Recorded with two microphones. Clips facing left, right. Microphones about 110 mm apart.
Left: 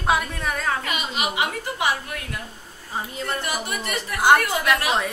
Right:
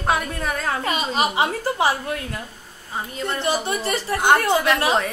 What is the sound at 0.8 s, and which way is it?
A woman's voice, 35° right (ahead or behind).